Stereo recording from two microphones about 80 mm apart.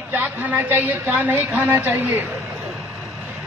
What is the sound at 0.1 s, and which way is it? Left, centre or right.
A woman's voice, right.